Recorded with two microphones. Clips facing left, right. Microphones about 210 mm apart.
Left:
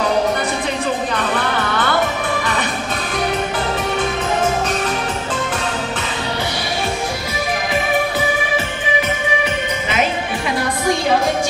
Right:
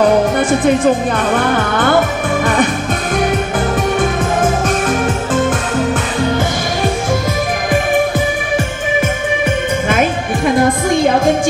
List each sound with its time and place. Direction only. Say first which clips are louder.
0.4 s speech: right 9 dB; 50° right (ahead or behind)
4.0 s music: right 4 dB; 50° right (ahead or behind)
9.8 s music: right 3 dB; 50° right (ahead or behind)